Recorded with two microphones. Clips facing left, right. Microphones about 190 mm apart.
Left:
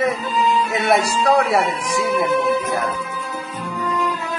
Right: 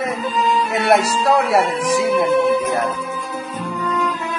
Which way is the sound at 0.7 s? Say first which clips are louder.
Right 2 dB; centre (ahead or behind).